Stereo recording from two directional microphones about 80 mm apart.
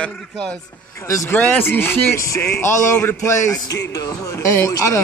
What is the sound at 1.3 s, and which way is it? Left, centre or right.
Speech, centre.